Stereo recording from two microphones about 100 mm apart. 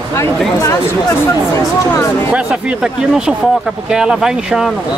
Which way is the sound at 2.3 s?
10° right (ahead or behind).